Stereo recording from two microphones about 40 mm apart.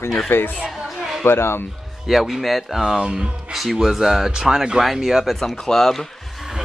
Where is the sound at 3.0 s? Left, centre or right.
Centre.